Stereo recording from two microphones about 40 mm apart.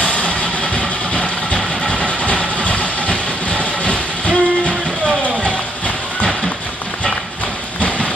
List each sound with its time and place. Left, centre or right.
0.0 s vehicle: left